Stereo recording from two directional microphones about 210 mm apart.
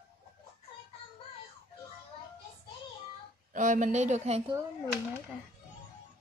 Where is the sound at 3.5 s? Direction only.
35° right (ahead or behind).